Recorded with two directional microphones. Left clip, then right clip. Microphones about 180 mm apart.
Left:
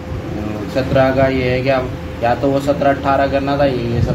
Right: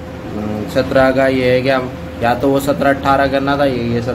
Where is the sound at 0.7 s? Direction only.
25° right (ahead or behind).